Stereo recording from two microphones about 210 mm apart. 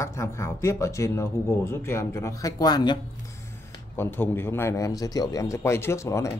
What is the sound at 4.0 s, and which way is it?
Speech, 10° left (ahead or behind).